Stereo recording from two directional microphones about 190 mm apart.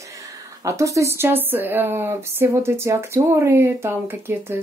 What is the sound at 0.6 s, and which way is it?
Speech, 15° right (ahead or behind).